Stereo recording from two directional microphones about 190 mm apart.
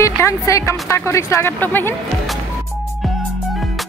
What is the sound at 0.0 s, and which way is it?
Speech, 15° left (ahead or behind).